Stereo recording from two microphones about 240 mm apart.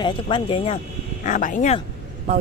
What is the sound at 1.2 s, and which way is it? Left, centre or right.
Speech, left.